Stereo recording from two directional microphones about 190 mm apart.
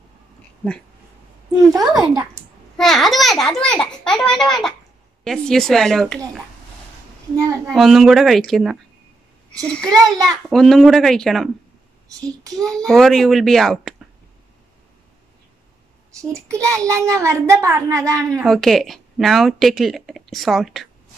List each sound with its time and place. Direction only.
1.7 s a child's voice: 20° right (ahead or behind)
2.3 s a child's voice: centre (ahead or behind)
10.1 s a child's voice: 20° right (ahead or behind)
10.5 s speech: centre (ahead or behind)
12.7 s speech: centre (ahead or behind)
16.7 s a woman's voice: 15° right (ahead or behind)
18.4 s speech: centre (ahead or behind)